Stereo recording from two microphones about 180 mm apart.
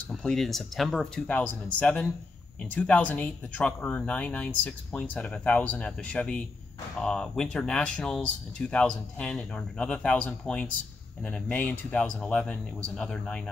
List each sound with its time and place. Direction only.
0.1 s speech: centre (ahead or behind)